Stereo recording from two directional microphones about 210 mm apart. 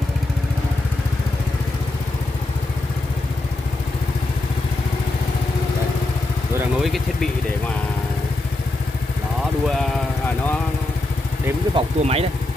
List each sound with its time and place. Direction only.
6.8 s speech: centre (ahead or behind)
11.7 s speech: 30° right (ahead or behind)